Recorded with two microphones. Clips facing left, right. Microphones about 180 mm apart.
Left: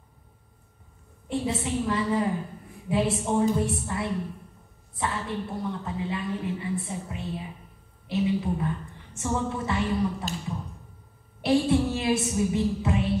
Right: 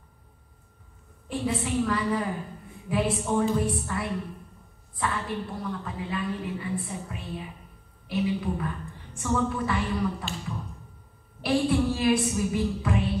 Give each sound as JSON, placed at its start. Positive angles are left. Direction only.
{"t": 1.3, "sound": "a woman's voice", "side_deg": 25}
{"t": 10.2, "sound": "speech", "side_deg": 40}
{"t": 11.4, "sound": "a woman's voice", "side_deg": 25}